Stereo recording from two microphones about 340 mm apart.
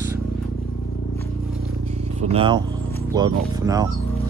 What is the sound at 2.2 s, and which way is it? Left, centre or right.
A man's voice, centre.